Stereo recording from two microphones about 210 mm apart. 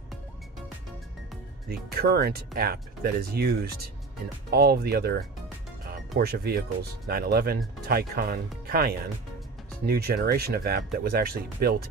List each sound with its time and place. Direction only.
1.7 s speech: 50° right (ahead or behind)